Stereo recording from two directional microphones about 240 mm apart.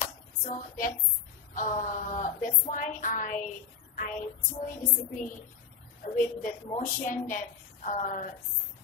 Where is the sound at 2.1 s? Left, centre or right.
Left.